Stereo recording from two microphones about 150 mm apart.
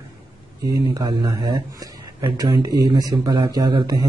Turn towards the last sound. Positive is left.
turn(degrees=-25)  # may be behind; listen again after turning